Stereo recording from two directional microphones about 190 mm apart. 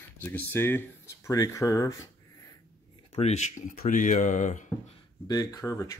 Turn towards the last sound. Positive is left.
turn(degrees=15)  # may be behind; listen again after turning